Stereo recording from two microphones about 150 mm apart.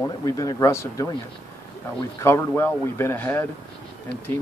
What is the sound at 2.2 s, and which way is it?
Speech, 15° left (ahead or behind).